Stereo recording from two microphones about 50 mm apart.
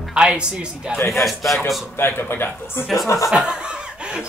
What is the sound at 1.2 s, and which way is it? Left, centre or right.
Speech, centre.